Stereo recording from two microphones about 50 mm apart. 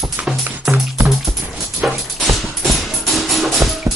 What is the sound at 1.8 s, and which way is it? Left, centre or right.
Music, centre.